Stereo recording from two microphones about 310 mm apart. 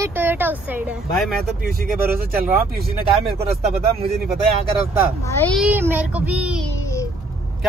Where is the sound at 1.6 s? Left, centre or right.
Right.